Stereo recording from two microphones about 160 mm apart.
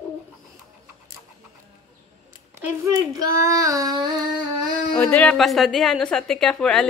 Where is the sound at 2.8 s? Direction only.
20° right (ahead or behind).